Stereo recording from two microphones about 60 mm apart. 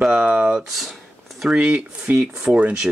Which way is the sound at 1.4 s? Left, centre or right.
Centre.